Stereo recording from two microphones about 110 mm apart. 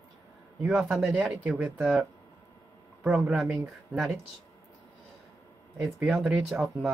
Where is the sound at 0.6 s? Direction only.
5° right (ahead or behind).